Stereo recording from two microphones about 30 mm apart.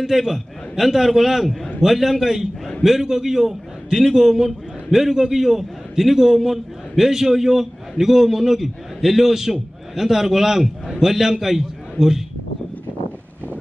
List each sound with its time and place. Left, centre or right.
0.2 s a man's voice: centre
5.4 s a man's voice: centre